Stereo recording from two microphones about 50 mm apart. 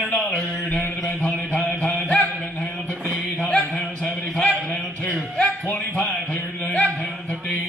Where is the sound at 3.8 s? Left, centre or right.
Left.